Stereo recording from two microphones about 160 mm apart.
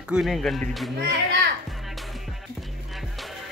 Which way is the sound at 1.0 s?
90° right.